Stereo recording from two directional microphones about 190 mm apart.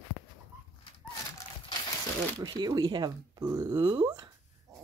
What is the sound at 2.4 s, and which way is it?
Speech, 20° right (ahead or behind).